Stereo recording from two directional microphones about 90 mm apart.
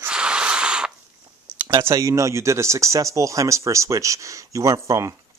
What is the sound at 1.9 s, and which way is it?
Speech, 35° right (ahead or behind).